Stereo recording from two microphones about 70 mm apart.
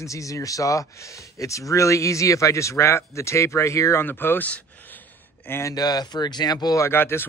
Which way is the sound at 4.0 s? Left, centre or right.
Left.